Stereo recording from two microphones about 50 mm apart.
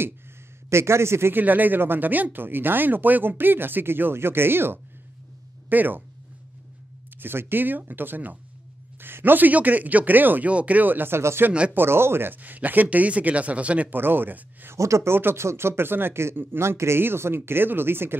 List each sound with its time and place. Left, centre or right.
0.7 s speech: right
1.3 s speech: right
5.7 s speech: right
7.2 s speech: right
12.4 s speech: right
13.9 s speech: right
14.8 s speech: right
15.0 s speech: right
17.0 s speech: right